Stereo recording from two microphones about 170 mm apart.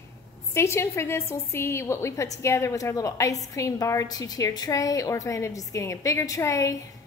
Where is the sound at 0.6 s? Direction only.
15° left (ahead or behind).